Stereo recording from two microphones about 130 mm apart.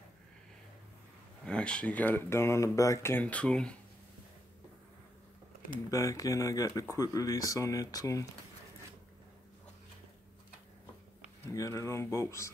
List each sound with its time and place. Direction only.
1.4 s speech: 5° left (ahead or behind)
5.9 s speech: 25° left (ahead or behind)
11.4 s speech: 25° left (ahead or behind)